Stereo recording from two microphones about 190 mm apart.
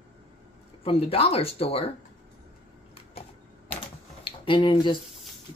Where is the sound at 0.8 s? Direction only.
30° left (ahead or behind).